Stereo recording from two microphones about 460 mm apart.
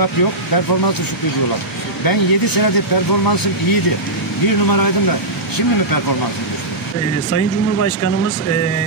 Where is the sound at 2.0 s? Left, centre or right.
Left.